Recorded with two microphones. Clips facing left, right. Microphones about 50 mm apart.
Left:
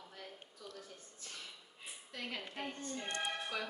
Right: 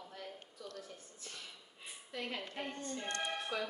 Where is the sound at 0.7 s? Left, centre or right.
Centre.